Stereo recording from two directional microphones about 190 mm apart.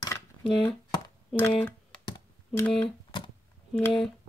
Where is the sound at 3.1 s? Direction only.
25° left (ahead or behind).